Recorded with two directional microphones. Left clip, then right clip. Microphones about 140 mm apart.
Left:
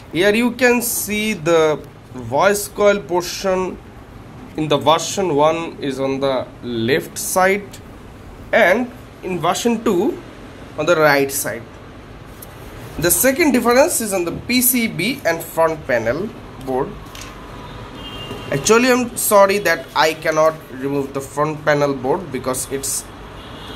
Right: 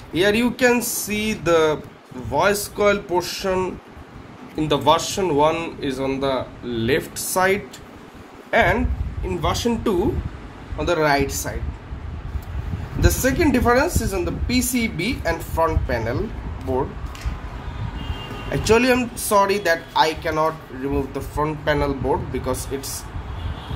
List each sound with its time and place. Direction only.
0.1 s speech: 10° left (ahead or behind)
13.0 s speech: 20° left (ahead or behind)
18.5 s speech: 10° left (ahead or behind)